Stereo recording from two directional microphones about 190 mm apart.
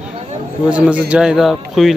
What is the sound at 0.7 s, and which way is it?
A man's voice, 5° right (ahead or behind).